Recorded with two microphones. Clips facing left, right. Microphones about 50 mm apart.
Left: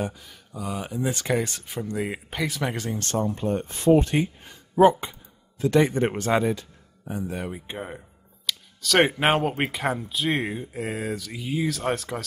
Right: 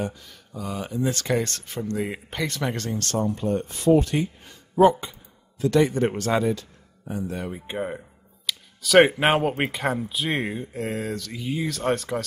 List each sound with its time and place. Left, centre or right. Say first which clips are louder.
0.0 s speech: even; centre
2.9 s speech: right 1 dB; left
5.6 s speech: even; left
7.5 s speech: right 5 dB; centre